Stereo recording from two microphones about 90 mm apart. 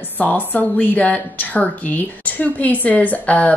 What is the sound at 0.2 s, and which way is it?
A woman's voice, 20° left (ahead or behind).